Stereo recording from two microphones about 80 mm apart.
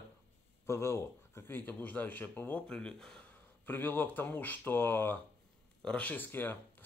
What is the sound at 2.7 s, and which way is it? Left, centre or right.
Speech, centre.